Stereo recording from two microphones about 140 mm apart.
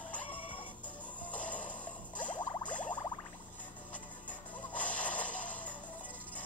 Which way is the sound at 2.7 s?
10° left (ahead or behind).